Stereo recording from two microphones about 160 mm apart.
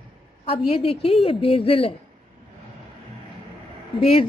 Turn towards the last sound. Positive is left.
turn(degrees=35)  # may be behind; listen again after turning